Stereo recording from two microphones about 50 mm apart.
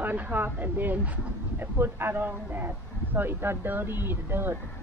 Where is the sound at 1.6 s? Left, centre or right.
Right.